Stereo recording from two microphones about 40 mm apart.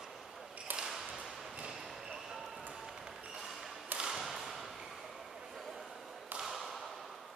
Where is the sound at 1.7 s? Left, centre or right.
Centre.